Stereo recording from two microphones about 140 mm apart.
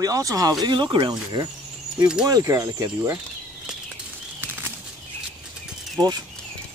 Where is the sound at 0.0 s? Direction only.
25° right (ahead or behind).